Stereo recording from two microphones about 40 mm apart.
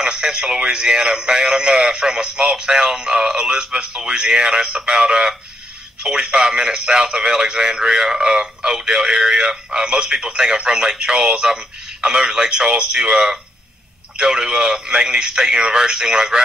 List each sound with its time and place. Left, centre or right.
0.0 s a man's voice: centre